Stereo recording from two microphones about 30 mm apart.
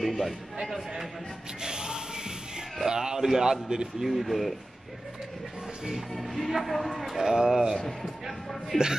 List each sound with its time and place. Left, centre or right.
0.0 s a man's voice: centre
1.6 s music: right
2.9 s a sound: right
3.6 s speech: right
4.0 s a man's voice: centre
6.1 s a man's voice: centre
7.2 s speech: centre
8.7 s speech: centre